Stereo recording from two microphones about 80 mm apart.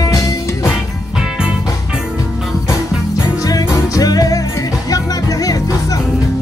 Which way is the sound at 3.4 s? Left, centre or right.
Left.